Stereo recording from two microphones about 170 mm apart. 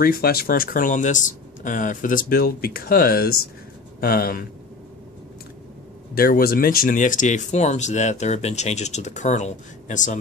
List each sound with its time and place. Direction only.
0.0 s speech: 60° left (ahead or behind)
6.1 s speech: 60° left (ahead or behind)